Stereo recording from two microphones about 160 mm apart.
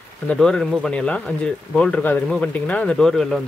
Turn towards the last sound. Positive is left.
turn(degrees=5)  # may be behind; listen again after turning